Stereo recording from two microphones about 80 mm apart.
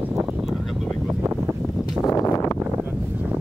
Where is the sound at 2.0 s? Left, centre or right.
Left.